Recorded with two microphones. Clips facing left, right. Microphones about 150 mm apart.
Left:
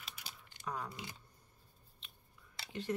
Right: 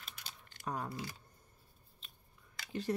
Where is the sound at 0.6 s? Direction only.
45° right (ahead or behind).